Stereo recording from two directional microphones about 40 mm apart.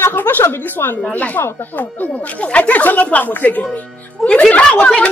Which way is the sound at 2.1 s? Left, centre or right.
Left.